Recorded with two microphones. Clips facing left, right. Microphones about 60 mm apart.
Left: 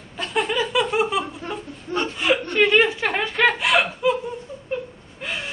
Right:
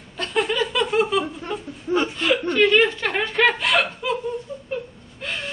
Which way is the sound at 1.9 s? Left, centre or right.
Centre.